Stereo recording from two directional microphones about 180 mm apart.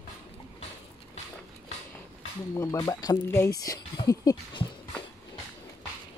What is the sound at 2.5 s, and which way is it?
Speech, 20° left (ahead or behind).